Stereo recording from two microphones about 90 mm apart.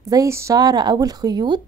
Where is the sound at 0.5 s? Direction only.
50° right (ahead or behind).